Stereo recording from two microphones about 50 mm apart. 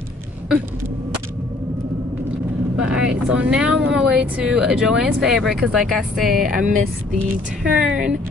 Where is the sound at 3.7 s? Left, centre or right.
Centre.